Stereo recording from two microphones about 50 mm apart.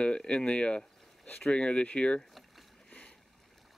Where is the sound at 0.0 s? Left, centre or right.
Centre.